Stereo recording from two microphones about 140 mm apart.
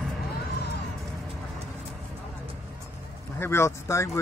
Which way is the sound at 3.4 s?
20° left (ahead or behind).